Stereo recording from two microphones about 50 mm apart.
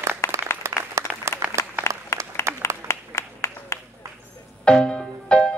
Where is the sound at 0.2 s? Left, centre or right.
Left.